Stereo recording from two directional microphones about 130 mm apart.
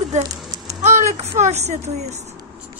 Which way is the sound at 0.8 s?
65° right (ahead or behind).